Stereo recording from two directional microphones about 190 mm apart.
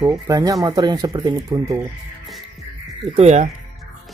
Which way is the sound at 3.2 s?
35° right (ahead or behind).